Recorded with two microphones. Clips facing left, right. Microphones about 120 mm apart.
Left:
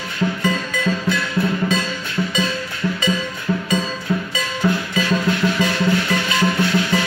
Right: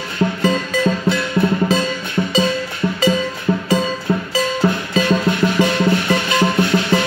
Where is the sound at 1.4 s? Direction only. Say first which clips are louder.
Right 3 dB; 40° right (ahead or behind).